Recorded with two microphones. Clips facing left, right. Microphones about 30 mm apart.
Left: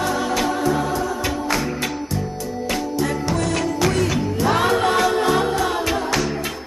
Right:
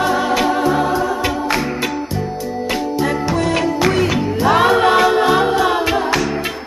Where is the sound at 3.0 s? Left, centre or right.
Right.